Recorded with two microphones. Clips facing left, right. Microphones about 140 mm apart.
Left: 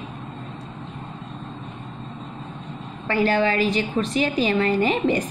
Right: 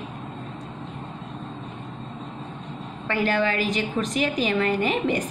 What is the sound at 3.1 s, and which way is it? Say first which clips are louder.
A woman's voice: left 3 dB; 30° left (ahead or behind).